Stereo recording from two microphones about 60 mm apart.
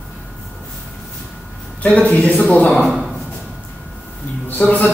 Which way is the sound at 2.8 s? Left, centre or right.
Centre.